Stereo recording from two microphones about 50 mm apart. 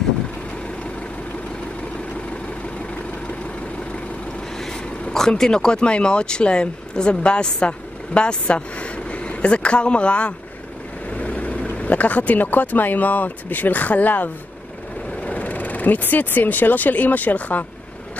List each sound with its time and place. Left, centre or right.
5.3 s speech: centre; by 17.6 s left